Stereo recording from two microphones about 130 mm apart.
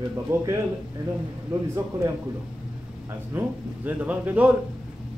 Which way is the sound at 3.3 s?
15° right (ahead or behind).